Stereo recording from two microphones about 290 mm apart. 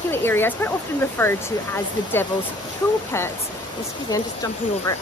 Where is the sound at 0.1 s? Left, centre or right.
Centre.